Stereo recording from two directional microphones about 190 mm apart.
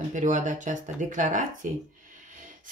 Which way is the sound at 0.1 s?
40° right (ahead or behind).